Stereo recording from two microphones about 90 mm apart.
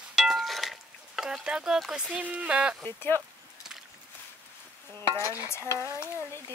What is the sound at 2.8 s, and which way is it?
Stir, 25° left (ahead or behind).